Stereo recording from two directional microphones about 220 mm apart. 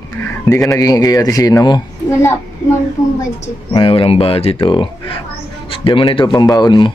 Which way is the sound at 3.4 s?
25° left (ahead or behind).